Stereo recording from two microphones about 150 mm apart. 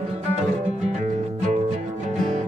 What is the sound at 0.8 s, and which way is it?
Music, 50° right (ahead or behind).